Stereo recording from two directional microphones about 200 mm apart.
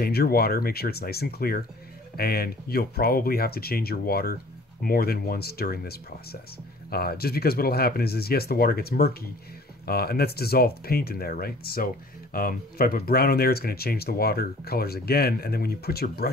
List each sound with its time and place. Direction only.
0.0 s speech: 50° left (ahead or behind)